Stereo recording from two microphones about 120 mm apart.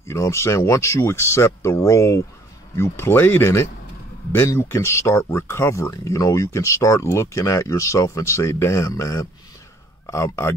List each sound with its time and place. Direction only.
0.1 s speech: 25° left (ahead or behind)